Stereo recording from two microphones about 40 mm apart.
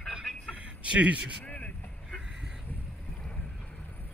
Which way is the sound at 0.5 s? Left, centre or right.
Right.